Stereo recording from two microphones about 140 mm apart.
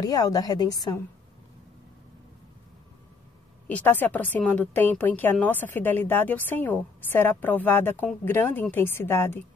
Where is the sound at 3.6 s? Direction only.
10° left (ahead or behind).